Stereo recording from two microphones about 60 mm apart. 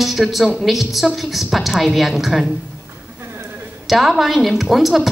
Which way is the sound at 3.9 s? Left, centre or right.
Centre.